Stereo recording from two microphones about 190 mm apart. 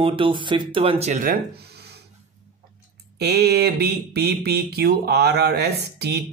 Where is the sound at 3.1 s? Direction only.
60° right (ahead or behind).